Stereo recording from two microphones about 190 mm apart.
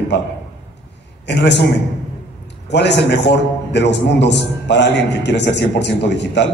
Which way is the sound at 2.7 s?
65° left (ahead or behind).